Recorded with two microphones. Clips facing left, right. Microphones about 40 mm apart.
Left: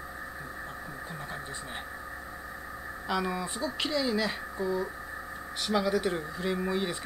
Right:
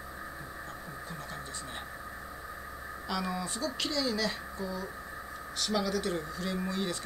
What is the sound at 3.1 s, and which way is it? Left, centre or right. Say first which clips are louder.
Speech: left 3 dB; centre.